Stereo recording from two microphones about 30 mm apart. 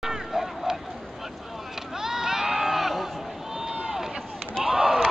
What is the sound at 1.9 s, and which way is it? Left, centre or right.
Crowd, centre.